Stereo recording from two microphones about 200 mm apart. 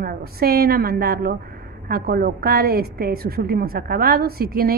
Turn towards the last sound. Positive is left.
turn(degrees=-50)  # may be behind; listen again after turning